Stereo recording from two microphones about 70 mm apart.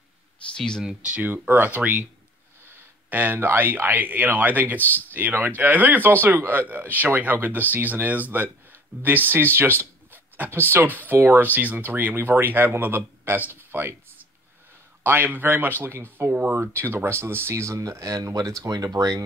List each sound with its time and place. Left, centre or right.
0.6 s speech: centre
0.8 s speech: centre
4.7 s speech: left
5.1 s speech: right
15.0 s speech: right